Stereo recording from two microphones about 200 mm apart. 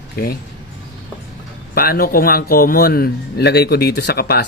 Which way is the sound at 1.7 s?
50° left (ahead or behind).